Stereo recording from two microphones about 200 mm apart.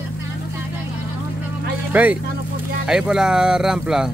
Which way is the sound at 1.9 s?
10° right (ahead or behind).